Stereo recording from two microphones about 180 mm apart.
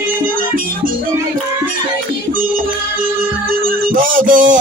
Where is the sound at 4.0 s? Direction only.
50° right (ahead or behind).